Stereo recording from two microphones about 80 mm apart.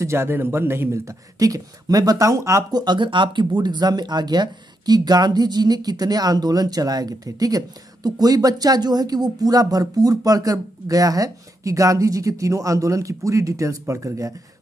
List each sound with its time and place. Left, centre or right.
0.0 s speech: right
2.7 s speech: right